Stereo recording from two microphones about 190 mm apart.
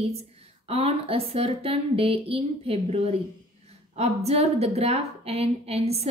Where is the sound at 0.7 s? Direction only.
30° right (ahead or behind).